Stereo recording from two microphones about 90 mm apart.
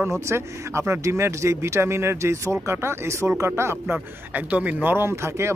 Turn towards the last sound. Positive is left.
turn(degrees=-30)  # may be behind; listen again after turning